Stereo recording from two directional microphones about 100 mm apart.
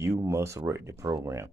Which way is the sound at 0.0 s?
30° right (ahead or behind).